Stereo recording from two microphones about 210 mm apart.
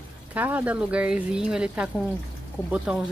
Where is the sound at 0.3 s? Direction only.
10° right (ahead or behind).